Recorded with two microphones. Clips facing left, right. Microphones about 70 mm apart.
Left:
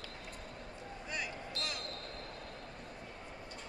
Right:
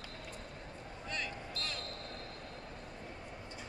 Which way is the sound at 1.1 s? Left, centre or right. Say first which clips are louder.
Even; centre.